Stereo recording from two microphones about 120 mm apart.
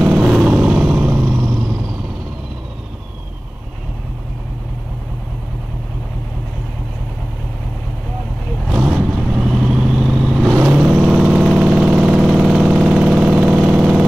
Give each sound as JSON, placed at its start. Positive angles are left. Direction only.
{"t": 0.0, "sound": "vehicle", "side_deg": 0}
{"t": 1.3, "sound": "vehicle", "side_deg": -20}
{"t": 8.6, "sound": "vehicle", "side_deg": 0}